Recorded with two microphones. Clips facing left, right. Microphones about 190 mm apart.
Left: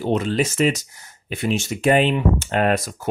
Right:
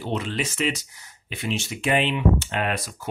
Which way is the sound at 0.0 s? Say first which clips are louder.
Left 7 dB; 45° left (ahead or behind).